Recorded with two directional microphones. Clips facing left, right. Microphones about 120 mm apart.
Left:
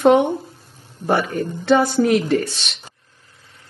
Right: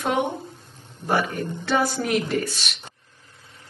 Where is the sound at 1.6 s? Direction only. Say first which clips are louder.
Left 8 dB; 25° left (ahead or behind).